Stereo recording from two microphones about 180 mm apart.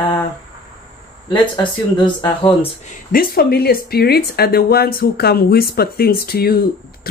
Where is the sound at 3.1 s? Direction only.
55° left (ahead or behind).